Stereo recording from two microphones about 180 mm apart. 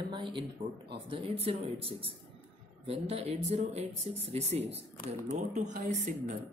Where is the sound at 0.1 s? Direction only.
25° right (ahead or behind).